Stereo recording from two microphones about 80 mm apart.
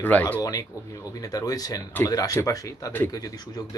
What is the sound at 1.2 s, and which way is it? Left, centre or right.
Speech, left.